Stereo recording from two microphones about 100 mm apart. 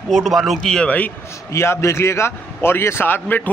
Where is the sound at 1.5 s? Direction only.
25° left (ahead or behind).